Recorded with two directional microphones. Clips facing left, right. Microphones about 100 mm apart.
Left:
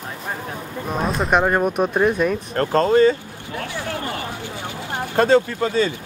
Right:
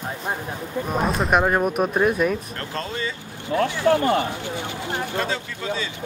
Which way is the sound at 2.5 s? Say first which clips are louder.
Left 14 dB; 45° left (ahead or behind).